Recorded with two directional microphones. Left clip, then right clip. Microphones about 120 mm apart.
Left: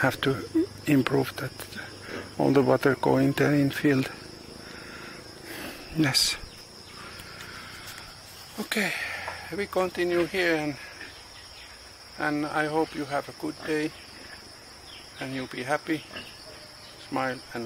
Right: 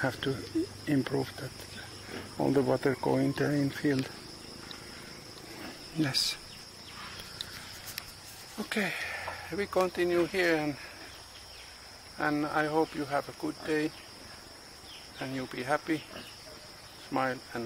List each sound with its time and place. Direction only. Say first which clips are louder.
0.0 s speech: left 7 dB; 20° left (ahead or behind)
5.9 s speech: left 6 dB; 20° left (ahead or behind)
8.6 s speech: left 4 dB; 10° left (ahead or behind)
12.2 s speech: left 2 dB; centre (ahead or behind)
15.1 s speech: left 3 dB; centre (ahead or behind)
17.1 s speech: left 2 dB; centre (ahead or behind)